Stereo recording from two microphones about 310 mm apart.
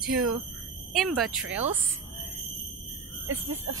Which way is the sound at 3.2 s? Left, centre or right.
Right.